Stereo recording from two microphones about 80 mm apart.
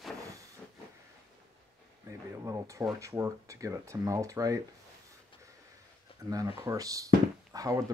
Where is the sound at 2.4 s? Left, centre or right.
Right.